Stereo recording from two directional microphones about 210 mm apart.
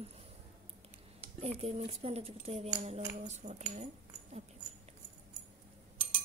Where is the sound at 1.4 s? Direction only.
30° right (ahead or behind).